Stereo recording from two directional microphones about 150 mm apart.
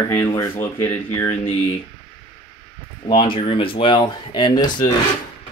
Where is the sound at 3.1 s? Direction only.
35° left (ahead or behind).